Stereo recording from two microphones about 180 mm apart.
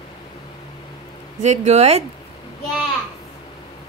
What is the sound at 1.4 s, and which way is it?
Speech, 40° right (ahead or behind).